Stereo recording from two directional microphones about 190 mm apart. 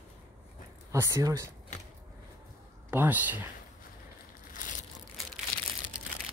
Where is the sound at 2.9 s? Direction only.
10° right (ahead or behind).